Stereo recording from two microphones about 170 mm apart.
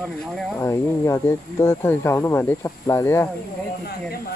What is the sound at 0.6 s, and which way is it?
Speech, 15° left (ahead or behind).